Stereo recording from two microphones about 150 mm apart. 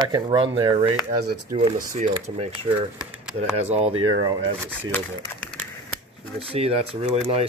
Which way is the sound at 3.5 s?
45° right (ahead or behind).